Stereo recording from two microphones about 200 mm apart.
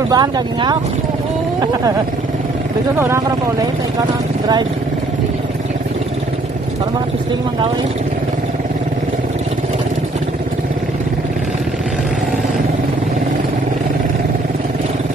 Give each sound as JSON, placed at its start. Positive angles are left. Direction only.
{"t": 0.1, "sound": "speech", "side_deg": -20}